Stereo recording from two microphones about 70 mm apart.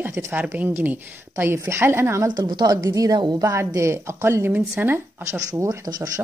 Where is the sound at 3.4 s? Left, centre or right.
Right.